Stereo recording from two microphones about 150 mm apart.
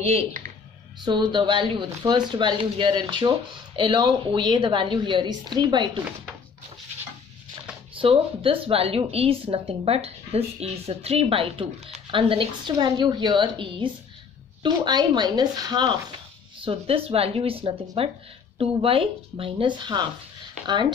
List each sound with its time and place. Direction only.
0.0 s speech: 45° right (ahead or behind)
1.0 s a woman's voice: 30° right (ahead or behind)
8.0 s a woman's voice: 35° right (ahead or behind)
16.6 s a woman's voice: 40° right (ahead or behind)